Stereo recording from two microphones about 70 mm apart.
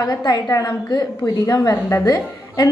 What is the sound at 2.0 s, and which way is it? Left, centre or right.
Speech, left.